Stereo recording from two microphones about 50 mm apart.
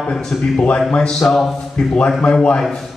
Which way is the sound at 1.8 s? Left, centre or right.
Centre.